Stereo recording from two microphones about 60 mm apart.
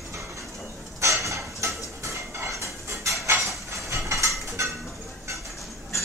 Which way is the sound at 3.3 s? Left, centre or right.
Right.